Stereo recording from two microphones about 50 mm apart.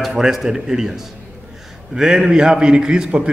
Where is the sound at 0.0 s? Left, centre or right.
Centre.